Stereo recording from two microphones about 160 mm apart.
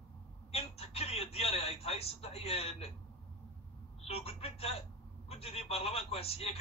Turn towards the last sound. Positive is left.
turn(degrees=40)  # may be behind; listen again after turning